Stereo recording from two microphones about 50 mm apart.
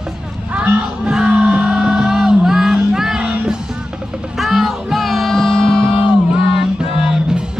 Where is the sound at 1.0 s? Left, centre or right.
Centre.